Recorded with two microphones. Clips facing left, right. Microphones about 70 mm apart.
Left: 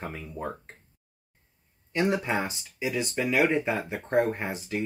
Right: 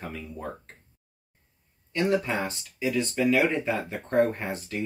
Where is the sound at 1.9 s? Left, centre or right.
Centre.